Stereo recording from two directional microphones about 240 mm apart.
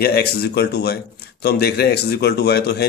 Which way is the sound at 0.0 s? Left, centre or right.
Left.